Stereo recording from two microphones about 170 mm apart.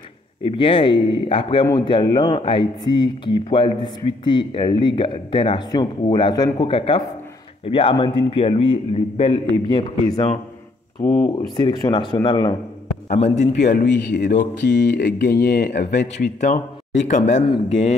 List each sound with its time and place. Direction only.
0.6 s a man's voice: 30° left (ahead or behind)
13.1 s a man's voice: 40° left (ahead or behind)
13.9 s speech: 90° left
16.3 s a man's voice: 45° left (ahead or behind)